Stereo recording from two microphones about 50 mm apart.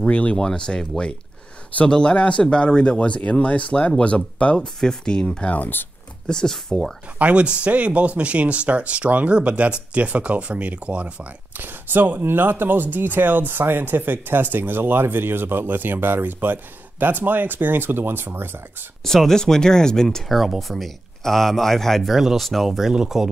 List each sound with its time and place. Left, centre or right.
0.0 s speech: left
4.6 s speech: centre
5.5 s speech: left
6.2 s speech: centre
7.2 s speech: right
11.6 s speech: right
19.0 s speech: centre
20.2 s speech: centre
22.1 s speech: centre